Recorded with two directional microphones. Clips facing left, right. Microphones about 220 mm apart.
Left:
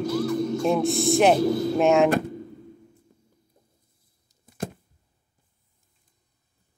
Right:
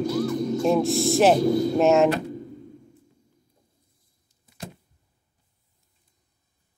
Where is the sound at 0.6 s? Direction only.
Centre (ahead or behind).